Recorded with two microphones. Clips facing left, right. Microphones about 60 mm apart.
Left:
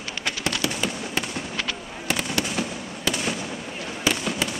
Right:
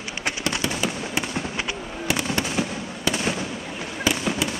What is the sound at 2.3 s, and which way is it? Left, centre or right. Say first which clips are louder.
Fireworks: right 2 dB; right.